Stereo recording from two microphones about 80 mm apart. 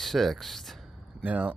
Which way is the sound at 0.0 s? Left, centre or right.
Centre.